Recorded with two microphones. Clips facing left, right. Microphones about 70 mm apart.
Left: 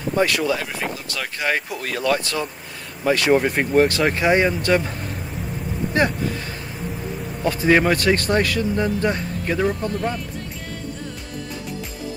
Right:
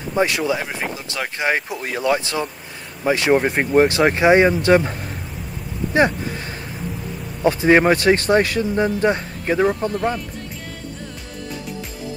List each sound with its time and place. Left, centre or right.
0.1 s speech: centre
5.9 s vehicle: centre
7.4 s speech: right
9.8 s speech: centre